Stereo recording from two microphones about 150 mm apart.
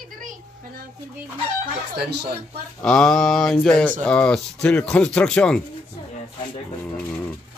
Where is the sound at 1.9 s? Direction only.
90° right.